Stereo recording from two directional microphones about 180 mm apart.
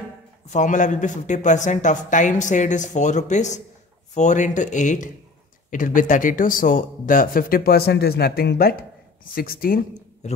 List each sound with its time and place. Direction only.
0.5 s speech: 45° left (ahead or behind)
10.2 s a man's voice: 40° left (ahead or behind)